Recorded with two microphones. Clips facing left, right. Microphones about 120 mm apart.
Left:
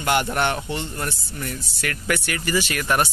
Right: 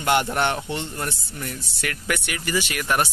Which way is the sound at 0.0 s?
25° right (ahead or behind).